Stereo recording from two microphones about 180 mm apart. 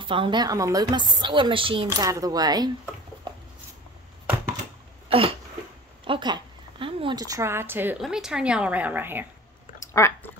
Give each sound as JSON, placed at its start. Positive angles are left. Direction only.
{"t": 0.0, "sound": "a woman's voice", "side_deg": -30}
{"t": 6.0, "sound": "a woman's voice", "side_deg": -25}
{"t": 9.8, "sound": "a sound", "side_deg": 15}